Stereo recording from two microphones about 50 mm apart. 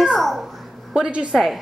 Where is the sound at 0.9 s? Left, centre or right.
Centre.